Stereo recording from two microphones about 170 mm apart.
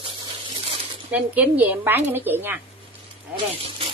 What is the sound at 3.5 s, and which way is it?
Zipper, 35° right (ahead or behind).